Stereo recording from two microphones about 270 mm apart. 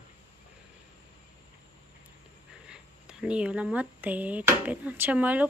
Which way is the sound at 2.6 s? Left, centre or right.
Centre.